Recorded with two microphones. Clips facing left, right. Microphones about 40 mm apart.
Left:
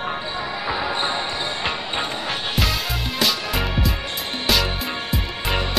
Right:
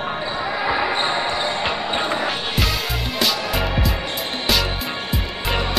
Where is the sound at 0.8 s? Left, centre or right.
Right.